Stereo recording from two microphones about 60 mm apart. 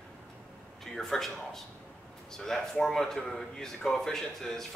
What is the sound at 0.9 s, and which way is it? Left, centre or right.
A man's voice, centre.